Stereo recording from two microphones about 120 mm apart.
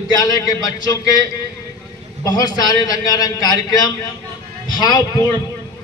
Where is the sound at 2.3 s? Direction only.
35° left (ahead or behind).